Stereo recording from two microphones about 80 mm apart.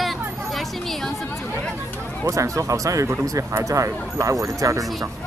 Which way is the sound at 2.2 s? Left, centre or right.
Right.